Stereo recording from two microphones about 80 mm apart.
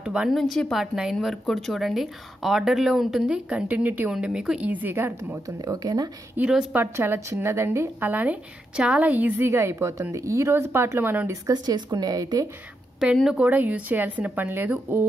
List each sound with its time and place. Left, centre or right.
0.0 s speech: centre
0.3 s speech: centre; by 4.1 s right
4.1 s speech: centre
4.6 s a woman's voice: right
5.6 s speech: right
6.4 s a woman's voice: right
9.4 s speech: right
11.5 s a woman's voice: right
13.0 s speech: centre
13.5 s a woman's voice: centre